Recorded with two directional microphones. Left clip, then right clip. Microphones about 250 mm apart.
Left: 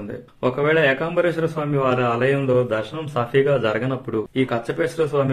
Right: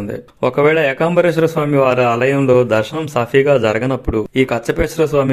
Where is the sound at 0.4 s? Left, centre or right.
Right.